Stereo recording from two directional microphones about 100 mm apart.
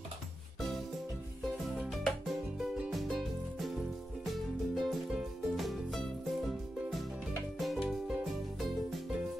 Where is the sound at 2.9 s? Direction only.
Centre (ahead or behind).